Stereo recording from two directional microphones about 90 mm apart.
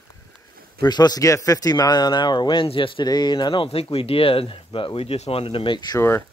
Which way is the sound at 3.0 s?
50° left (ahead or behind).